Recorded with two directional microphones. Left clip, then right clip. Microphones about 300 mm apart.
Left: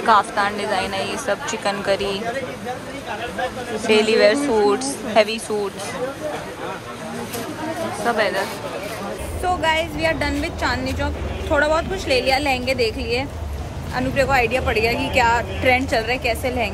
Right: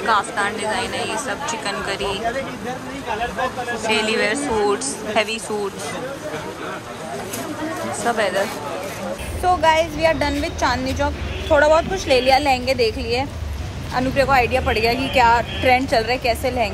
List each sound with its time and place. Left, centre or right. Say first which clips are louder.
0.0 s speech: left 3 dB; centre
3.8 s speech: left 5 dB; centre
8.0 s speech: even; centre
9.4 s speech: right 4 dB; centre